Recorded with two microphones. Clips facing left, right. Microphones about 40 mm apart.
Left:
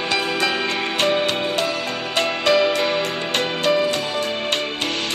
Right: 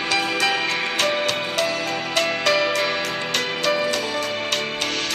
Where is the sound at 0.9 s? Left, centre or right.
Centre.